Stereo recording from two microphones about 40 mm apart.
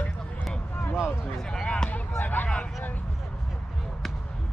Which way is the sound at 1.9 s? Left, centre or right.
Left.